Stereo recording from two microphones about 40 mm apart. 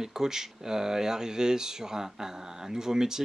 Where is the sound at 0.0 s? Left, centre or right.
Centre.